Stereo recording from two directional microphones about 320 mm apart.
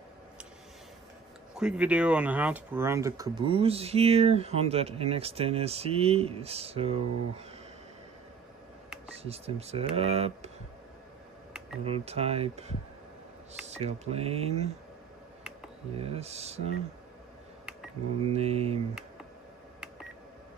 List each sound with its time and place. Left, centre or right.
1.5 s speech: centre
9.2 s speech: centre
11.8 s speech: centre
16.0 s speech: centre
18.3 s speech: centre